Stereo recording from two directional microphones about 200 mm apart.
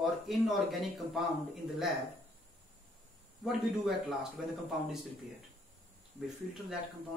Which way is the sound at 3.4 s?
Centre (ahead or behind).